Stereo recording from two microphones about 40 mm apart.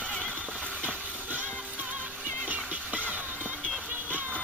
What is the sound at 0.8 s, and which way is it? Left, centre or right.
Music, right.